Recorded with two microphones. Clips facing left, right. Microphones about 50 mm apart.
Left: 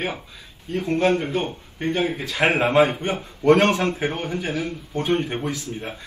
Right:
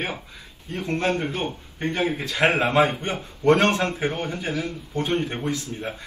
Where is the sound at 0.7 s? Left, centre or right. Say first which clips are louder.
Left 4 dB; right.